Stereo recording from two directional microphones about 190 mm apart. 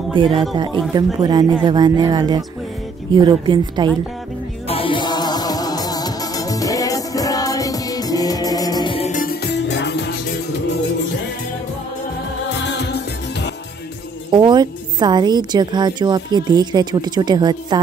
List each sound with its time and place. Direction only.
0.1 s a woman's voice: 25° right (ahead or behind)
4.6 s music: 30° left (ahead or behind)
9.1 s music: 50° left (ahead or behind)
12.5 s music: 65° left (ahead or behind)
14.3 s a woman's voice: 25° right (ahead or behind)